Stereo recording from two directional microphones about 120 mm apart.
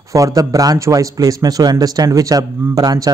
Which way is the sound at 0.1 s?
30° right (ahead or behind).